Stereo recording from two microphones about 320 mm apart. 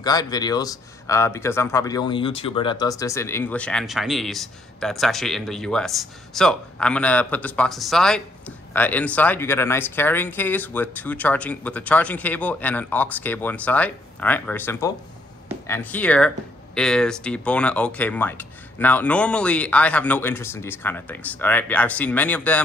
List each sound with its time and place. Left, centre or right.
0.0 s speech: centre